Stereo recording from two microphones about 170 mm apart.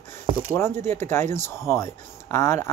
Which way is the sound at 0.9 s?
15° left (ahead or behind).